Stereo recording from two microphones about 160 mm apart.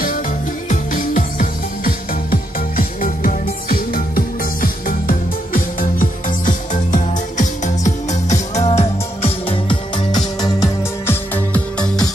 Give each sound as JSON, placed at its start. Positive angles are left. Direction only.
{"t": 0.7, "sound": "music", "side_deg": 55}
{"t": 11.1, "sound": "music", "side_deg": 10}